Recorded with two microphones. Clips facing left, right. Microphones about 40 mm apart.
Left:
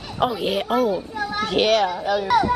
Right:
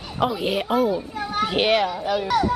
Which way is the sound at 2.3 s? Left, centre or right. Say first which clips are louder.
Left 3 dB; centre.